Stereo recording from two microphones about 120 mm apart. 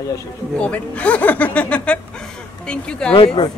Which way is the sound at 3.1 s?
45° left (ahead or behind).